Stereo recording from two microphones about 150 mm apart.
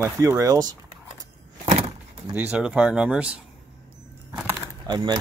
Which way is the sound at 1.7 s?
40° right (ahead or behind).